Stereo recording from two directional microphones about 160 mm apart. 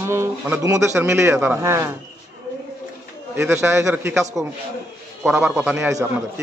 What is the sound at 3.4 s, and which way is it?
A man's voice, 15° right (ahead or behind).